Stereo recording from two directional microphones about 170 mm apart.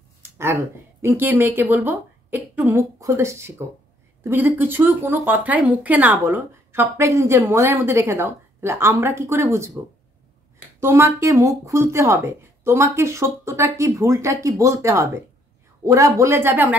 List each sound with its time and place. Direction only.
0.2 s a sound: 15° right (ahead or behind)
1.0 s a woman's voice: 10° right (ahead or behind)
10.8 s a woman's voice: 15° right (ahead or behind)